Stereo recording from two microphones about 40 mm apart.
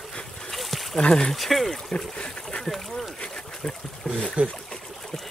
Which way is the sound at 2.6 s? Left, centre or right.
Centre.